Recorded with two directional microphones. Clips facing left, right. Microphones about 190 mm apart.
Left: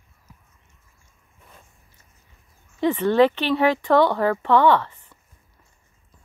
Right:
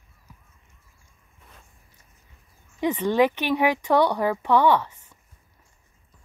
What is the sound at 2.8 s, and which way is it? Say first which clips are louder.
Speech: left 3 dB; 15° right (ahead or behind).